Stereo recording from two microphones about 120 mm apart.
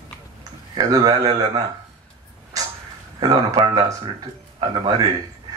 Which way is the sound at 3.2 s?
30° right (ahead or behind).